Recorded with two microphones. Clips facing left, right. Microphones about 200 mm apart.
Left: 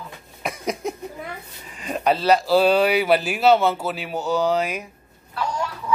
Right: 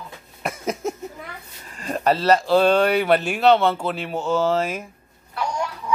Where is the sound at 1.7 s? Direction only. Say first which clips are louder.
Right 1 dB; centre (ahead or behind).